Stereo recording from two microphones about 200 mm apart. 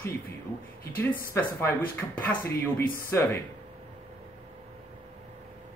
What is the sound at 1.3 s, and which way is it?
Speech, 10° left (ahead or behind).